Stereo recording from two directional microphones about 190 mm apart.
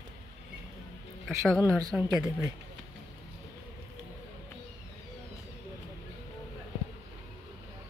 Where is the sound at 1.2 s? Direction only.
Centre (ahead or behind).